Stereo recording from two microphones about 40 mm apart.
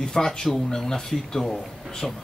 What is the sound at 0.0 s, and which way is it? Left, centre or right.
Speech, centre.